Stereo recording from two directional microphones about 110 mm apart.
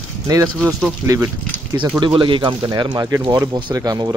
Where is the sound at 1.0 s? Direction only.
20° right (ahead or behind).